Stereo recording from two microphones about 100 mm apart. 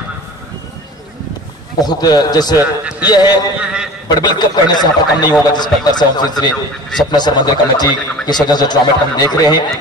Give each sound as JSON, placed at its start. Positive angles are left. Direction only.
{"t": 1.8, "sound": "a man's voice", "side_deg": 40}
{"t": 2.6, "sound": "a man's voice", "side_deg": -15}
{"t": 3.1, "sound": "a man's voice", "side_deg": 40}
{"t": 3.5, "sound": "a man's voice", "side_deg": -10}
{"t": 4.1, "sound": "a man's voice", "side_deg": 45}